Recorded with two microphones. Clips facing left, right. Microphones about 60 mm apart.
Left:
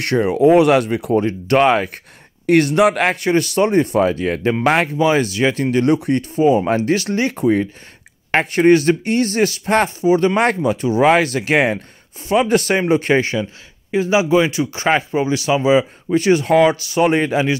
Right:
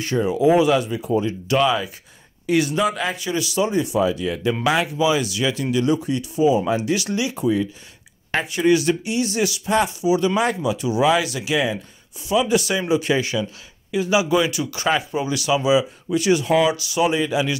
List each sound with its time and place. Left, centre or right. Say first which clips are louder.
0.0 s speech: left 4 dB; left